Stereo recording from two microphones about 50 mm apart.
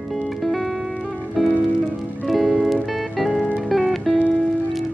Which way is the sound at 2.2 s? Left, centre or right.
Centre.